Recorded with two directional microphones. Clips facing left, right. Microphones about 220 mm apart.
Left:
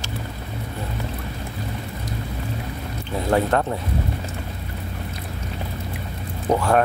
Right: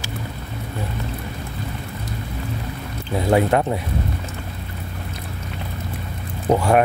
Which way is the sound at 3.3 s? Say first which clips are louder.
Right 2 dB; 10° right (ahead or behind).